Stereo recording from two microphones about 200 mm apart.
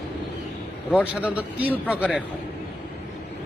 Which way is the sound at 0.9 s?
5° right (ahead or behind).